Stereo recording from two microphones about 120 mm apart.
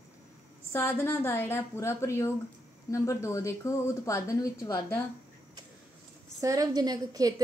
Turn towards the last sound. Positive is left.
turn(degrees=-30)  # may be behind; listen again after turning